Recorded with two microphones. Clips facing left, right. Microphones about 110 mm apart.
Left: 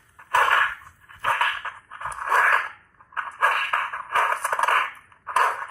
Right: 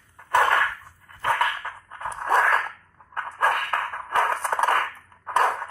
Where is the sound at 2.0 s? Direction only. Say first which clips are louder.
Even; 20° right (ahead or behind).